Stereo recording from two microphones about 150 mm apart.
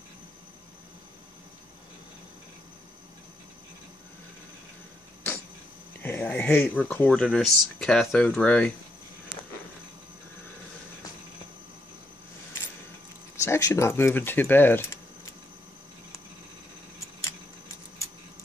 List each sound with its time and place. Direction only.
5.2 s a sound: 15° left (ahead or behind)
6.0 s speech: 15° left (ahead or behind)
13.4 s speech: 20° left (ahead or behind)